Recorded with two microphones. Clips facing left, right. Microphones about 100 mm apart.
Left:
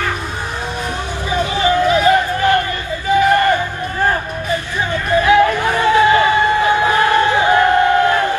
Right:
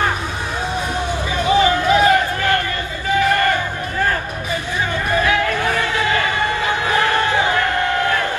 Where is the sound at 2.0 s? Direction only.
20° left (ahead or behind).